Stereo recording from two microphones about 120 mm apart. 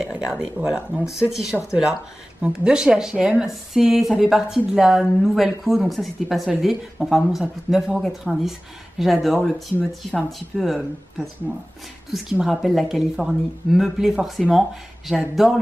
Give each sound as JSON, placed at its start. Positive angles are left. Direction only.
{"t": 0.0, "sound": "speech", "side_deg": -5}
{"t": 12.1, "sound": "speech", "side_deg": -5}